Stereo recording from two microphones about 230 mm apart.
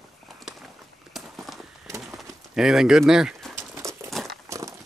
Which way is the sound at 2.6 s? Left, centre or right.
Centre.